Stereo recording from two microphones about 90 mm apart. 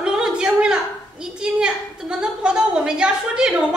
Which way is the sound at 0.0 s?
10° right (ahead or behind).